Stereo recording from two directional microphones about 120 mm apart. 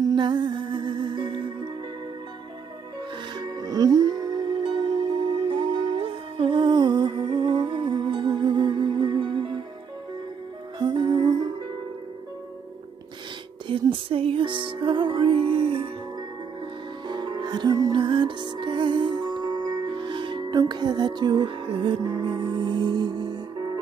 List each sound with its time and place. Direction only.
0.0 s music: 40° right (ahead or behind)
3.3 s music: 35° right (ahead or behind)
10.8 s music: 40° right (ahead or behind)
13.7 s music: 50° right (ahead or behind)
17.1 s music: 35° right (ahead or behind)